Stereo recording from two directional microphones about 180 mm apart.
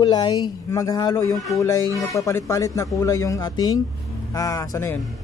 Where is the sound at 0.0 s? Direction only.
25° left (ahead or behind).